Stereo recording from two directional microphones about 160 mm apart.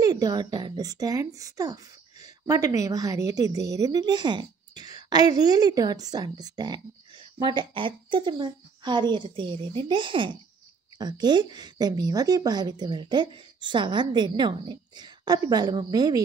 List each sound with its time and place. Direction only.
0.0 s a child's voice: 25° right (ahead or behind)